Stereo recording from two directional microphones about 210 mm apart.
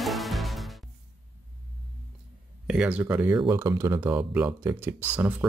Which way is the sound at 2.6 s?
5° right (ahead or behind).